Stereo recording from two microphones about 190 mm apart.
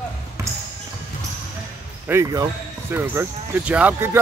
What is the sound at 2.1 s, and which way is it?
Speech, 15° right (ahead or behind).